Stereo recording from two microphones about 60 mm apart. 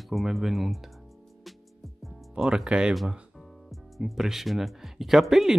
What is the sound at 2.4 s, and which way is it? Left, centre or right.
Speech, centre.